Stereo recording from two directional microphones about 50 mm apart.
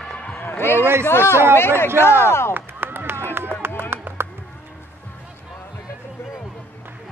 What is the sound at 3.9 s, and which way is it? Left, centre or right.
Music, right.